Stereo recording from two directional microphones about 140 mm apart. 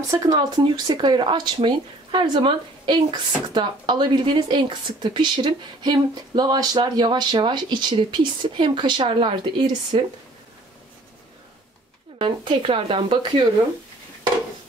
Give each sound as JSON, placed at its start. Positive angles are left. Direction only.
{"t": 0.1, "sound": "speech", "side_deg": -25}
{"t": 12.2, "sound": "speech", "side_deg": -35}